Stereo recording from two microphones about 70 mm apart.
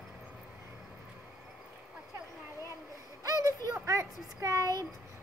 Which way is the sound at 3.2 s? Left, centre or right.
Right.